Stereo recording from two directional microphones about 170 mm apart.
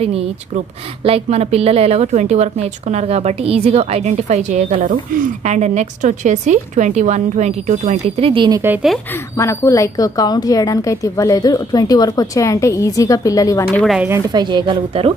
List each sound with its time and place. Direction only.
1.0 s a woman's voice: 35° right (ahead or behind)
9.4 s a woman's voice: 15° left (ahead or behind)
13.7 s speech: centre (ahead or behind)
14.3 s speech: 25° right (ahead or behind)